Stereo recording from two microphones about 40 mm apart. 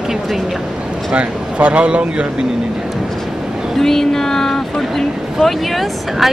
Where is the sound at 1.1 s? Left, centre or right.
Right.